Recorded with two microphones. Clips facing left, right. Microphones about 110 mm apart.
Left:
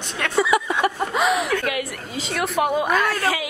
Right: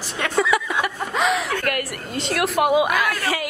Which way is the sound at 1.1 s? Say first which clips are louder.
Left 1 dB; 5° left (ahead or behind).